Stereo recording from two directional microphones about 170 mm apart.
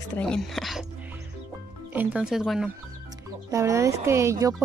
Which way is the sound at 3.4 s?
20° right (ahead or behind).